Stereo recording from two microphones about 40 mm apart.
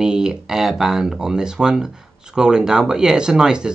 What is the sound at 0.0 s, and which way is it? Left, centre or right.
Speech, centre.